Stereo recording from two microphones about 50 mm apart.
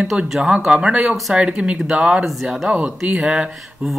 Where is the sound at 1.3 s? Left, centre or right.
Right.